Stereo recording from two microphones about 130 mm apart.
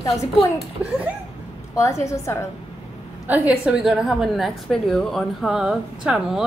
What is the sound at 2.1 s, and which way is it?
Speech, 20° left (ahead or behind).